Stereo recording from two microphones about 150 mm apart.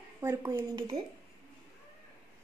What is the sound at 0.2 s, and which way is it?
Speech, 20° right (ahead or behind).